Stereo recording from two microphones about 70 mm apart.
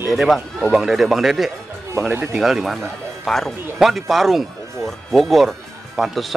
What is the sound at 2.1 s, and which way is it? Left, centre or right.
Speech, right.